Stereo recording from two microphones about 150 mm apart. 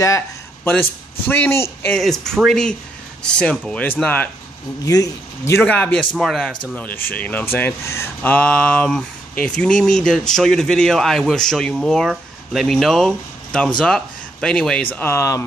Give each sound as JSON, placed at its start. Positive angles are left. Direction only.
{"t": 0.7, "sound": "speech", "side_deg": 15}
{"t": 2.0, "sound": "speech", "side_deg": 0}
{"t": 4.8, "sound": "speech", "side_deg": 25}
{"t": 5.6, "sound": "speech", "side_deg": 10}